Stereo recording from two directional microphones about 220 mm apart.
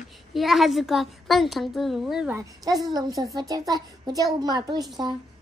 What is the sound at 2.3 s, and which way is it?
A child's voice, 15° right (ahead or behind).